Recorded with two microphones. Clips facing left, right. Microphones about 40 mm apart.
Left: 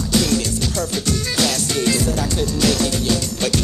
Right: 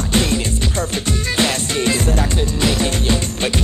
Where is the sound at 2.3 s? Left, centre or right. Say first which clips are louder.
Even; right.